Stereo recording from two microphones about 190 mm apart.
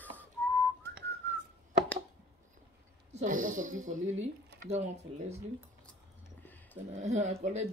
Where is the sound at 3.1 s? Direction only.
40° right (ahead or behind).